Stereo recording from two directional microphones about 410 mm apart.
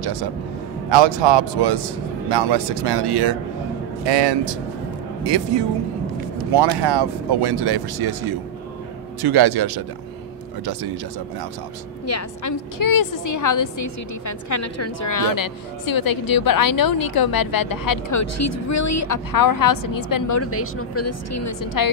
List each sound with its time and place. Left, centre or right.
0.0 s a man's voice: right
0.8 s a man's voice: right
4.0 s speech: right
6.5 s a man's voice: right
12.1 s a woman's voice: left
18.2 s a woman's voice: left
20.4 s speech: left